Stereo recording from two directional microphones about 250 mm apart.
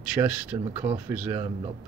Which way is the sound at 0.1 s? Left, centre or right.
Centre.